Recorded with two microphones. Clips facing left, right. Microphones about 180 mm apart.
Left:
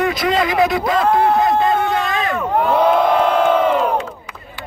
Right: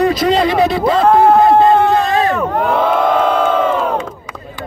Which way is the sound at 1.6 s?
35° right (ahead or behind).